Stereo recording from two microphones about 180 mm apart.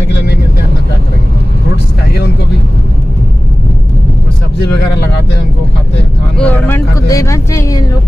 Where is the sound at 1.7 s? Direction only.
60° left (ahead or behind).